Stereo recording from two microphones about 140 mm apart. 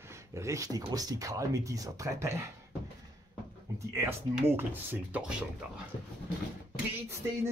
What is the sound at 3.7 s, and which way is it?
Speech, 20° right (ahead or behind).